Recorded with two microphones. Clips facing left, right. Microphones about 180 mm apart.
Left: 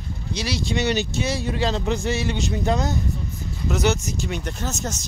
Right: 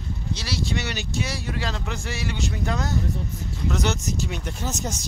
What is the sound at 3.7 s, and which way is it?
Speech, 5° left (ahead or behind).